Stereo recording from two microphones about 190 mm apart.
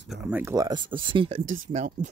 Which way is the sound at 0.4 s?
15° right (ahead or behind).